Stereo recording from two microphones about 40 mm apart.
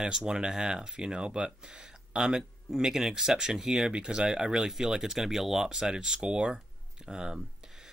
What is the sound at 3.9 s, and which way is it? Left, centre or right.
Speech, right.